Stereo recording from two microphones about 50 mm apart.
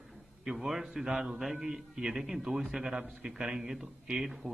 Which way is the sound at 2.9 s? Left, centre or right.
Right.